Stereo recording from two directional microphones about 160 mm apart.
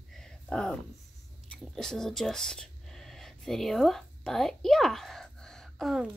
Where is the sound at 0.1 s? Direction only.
5° left (ahead or behind).